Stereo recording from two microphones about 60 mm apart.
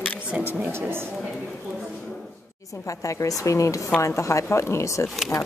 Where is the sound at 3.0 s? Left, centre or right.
Left.